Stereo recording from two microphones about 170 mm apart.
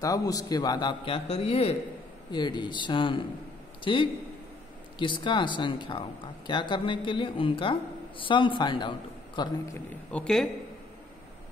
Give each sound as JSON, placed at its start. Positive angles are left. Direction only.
{"t": 0.0, "sound": "speech", "side_deg": 20}
{"t": 2.3, "sound": "speech", "side_deg": 25}
{"t": 9.8, "sound": "a man's voice", "side_deg": 5}